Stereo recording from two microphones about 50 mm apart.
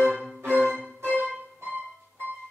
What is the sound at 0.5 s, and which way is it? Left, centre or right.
Music, right.